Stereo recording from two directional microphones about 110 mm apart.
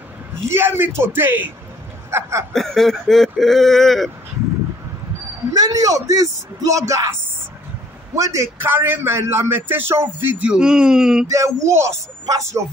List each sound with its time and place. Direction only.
0.5 s a man's voice: 20° right (ahead or behind)
2.5 s speech: 5° left (ahead or behind)
5.5 s a man's voice: 35° right (ahead or behind)
8.2 s a man's voice: 30° right (ahead or behind)
10.4 s speech: 5° right (ahead or behind)
11.2 s a man's voice: 30° right (ahead or behind)